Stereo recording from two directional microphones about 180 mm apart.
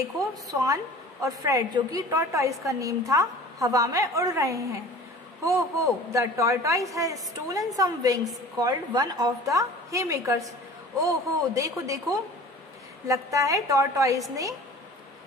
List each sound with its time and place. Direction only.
0.2 s a woman's voice: 20° right (ahead or behind)